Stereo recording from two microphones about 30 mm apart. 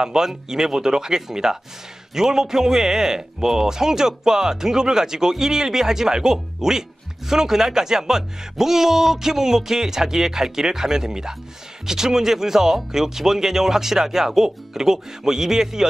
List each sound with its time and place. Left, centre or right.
0.0 s a man's voice: centre